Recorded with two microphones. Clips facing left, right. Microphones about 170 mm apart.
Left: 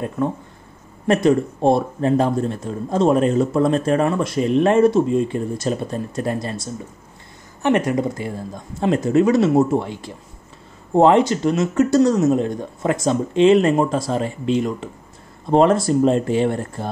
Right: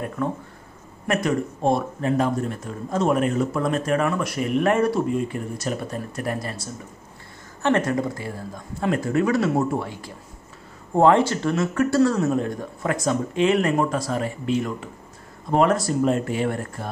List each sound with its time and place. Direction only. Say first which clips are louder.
1.0 s speech: left 7 dB; 30° left (ahead or behind)